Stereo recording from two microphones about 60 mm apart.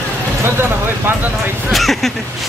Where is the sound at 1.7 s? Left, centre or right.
Centre.